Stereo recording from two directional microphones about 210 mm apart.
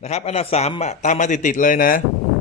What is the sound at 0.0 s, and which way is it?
Speech, 30° left (ahead or behind).